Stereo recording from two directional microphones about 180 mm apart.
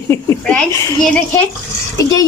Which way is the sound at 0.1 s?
15° left (ahead or behind).